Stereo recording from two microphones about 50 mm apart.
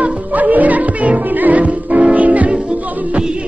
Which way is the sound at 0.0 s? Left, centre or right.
Right.